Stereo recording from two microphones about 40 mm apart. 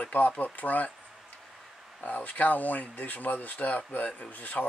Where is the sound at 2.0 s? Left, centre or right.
Left.